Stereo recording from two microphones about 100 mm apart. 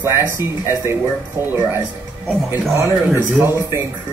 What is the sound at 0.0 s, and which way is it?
Speech, 20° right (ahead or behind).